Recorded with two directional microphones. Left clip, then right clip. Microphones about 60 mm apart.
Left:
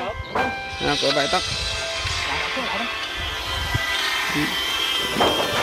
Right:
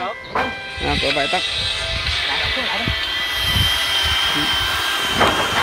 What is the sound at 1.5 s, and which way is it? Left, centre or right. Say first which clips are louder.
Music: right 4 dB; left.